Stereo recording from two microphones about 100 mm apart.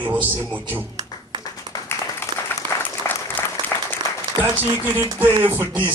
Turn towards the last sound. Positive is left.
turn(degrees=-20)  # may be behind; listen again after turning